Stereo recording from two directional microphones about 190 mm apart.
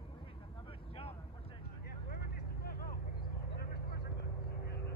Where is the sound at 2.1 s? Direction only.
55° left (ahead or behind).